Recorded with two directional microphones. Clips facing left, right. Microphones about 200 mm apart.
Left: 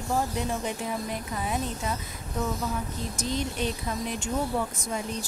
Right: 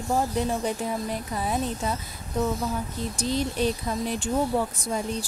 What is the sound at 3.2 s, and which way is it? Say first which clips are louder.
Speech: right 4 dB; 35° right (ahead or behind).